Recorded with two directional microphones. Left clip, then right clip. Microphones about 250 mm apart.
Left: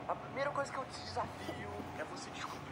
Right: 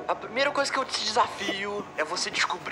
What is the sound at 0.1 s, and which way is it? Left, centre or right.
Speech, right.